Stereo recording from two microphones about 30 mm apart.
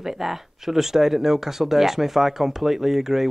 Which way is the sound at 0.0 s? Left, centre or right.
Centre.